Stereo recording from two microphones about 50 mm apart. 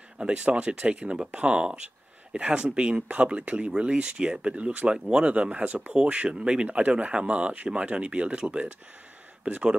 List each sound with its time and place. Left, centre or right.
0.2 s speech: right